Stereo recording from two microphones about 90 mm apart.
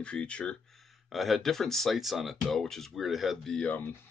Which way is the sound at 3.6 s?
20° left (ahead or behind).